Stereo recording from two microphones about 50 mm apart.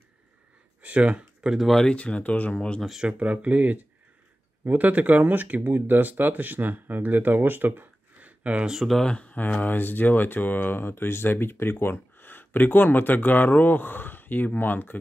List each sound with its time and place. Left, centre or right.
0.8 s speech: right
1.4 s speech: centre
1.9 s speech: left
3.2 s speech: right
9.0 s speech: left
9.6 s speech: left